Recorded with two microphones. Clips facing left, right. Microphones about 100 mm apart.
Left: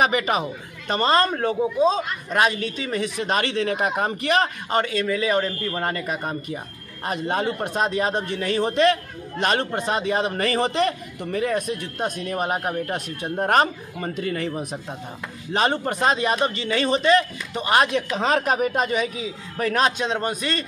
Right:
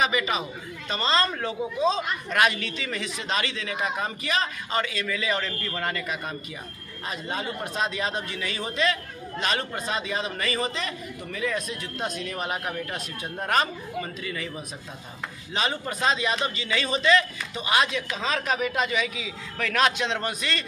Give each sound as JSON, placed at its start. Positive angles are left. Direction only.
{"t": 0.0, "sound": "a man's voice", "side_deg": 50}
{"t": 1.3, "sound": "speech", "side_deg": 40}
{"t": 3.2, "sound": "a man's voice", "side_deg": 50}
{"t": 5.0, "sound": "speech", "side_deg": 35}
{"t": 7.1, "sound": "a man's voice", "side_deg": 55}
{"t": 10.6, "sound": "a man's voice", "side_deg": 60}